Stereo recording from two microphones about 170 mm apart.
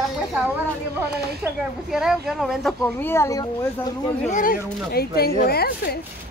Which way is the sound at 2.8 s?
15° left (ahead or behind).